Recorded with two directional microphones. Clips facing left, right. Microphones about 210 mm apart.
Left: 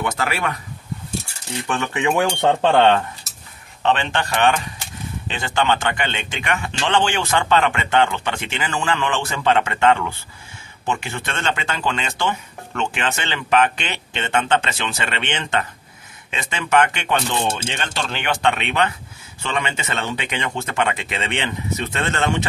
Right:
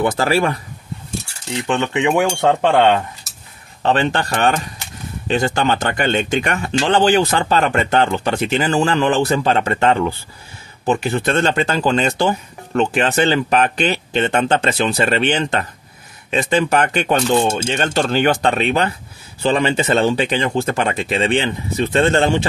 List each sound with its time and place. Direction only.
0.0 s speech: 35° right (ahead or behind)
1.7 s speech: 20° right (ahead or behind)
2.4 s cutlery: 5° right (ahead or behind)
3.8 s speech: 40° right (ahead or behind)